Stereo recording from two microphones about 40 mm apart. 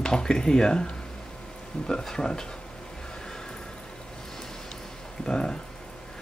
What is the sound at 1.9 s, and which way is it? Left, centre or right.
Speech, centre.